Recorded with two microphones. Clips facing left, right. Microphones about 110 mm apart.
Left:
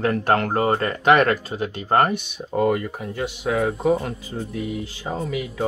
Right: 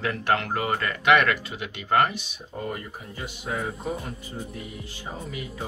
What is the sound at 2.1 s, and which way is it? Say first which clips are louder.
Speech: left 10 dB; 65° left (ahead or behind).